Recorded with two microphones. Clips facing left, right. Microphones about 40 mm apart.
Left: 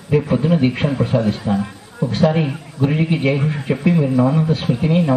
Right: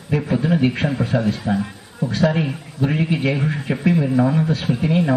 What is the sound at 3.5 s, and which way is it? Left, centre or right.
A man's voice, centre.